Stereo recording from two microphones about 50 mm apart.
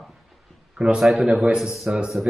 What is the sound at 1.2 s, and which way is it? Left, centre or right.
Speech, right.